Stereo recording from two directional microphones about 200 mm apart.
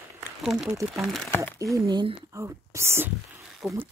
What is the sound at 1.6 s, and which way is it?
Speech, 15° right (ahead or behind).